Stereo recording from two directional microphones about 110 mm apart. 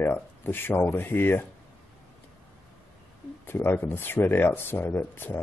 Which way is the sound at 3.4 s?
20° left (ahead or behind).